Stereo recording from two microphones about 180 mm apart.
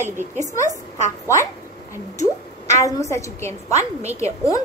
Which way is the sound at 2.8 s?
15° left (ahead or behind).